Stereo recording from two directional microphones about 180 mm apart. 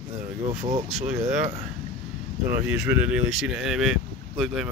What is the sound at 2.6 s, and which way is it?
Speech, 5° right (ahead or behind).